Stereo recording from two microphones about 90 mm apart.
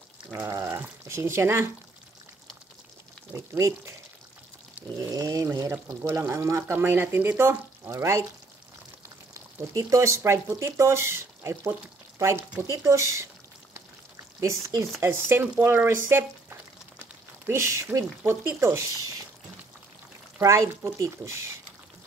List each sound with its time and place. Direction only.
0.4 s a sound: 35° right (ahead or behind)
1.0 s speech: 30° right (ahead or behind)
3.5 s speech: 35° right (ahead or behind)
4.8 s pour: 20° right (ahead or behind)
5.1 s speech: 40° right (ahead or behind)
5.7 s speech: 25° right (ahead or behind)
9.8 s speech: 35° right (ahead or behind)
14.4 s speech: 35° right (ahead or behind)
20.4 s speech: 35° right (ahead or behind)